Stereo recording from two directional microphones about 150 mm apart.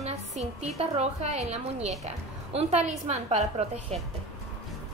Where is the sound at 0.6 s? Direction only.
45° right (ahead or behind).